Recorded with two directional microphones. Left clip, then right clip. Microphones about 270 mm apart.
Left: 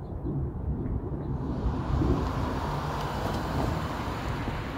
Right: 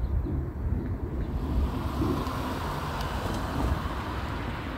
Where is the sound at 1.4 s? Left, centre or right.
Centre.